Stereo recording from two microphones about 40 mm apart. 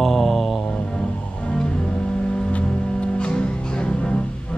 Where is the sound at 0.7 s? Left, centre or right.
Left.